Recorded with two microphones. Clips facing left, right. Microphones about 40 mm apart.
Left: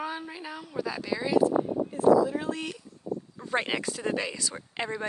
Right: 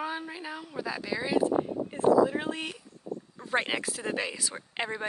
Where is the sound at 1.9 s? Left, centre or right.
Right.